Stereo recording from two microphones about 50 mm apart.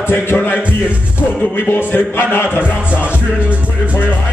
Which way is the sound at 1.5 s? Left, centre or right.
Left.